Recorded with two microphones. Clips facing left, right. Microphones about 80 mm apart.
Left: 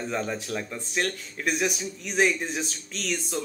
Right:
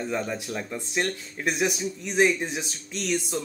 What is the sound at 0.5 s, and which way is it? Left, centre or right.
Speech, centre.